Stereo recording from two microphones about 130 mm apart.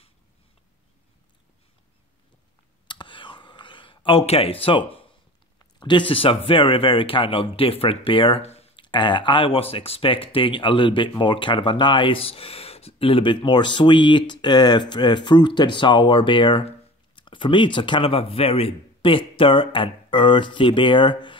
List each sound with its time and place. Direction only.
2.9 s whispering: 40° left (ahead or behind)
5.8 s speech: 35° left (ahead or behind)